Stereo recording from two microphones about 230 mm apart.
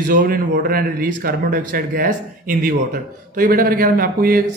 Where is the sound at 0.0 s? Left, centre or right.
Right.